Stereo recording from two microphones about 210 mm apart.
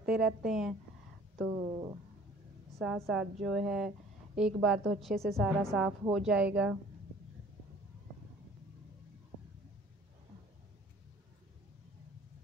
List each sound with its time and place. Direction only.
0.0 s a woman's voice: 5° right (ahead or behind)
1.6 s speech: 20° right (ahead or behind)
2.8 s a woman's voice: centre (ahead or behind)